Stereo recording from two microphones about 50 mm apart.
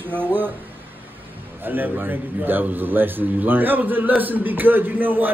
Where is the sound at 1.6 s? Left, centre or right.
Right.